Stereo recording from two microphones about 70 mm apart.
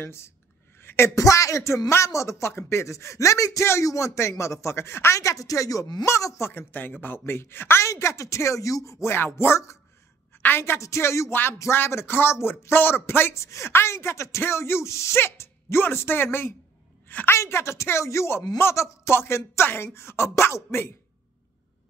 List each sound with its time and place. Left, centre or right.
0.0 s speech: left
6.5 s speech: left
7.9 s speech: left
9.1 s speech: left
13.3 s a woman's voice: left
17.4 s speech: left